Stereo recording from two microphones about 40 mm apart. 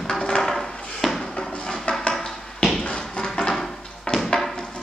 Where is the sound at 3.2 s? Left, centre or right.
Left.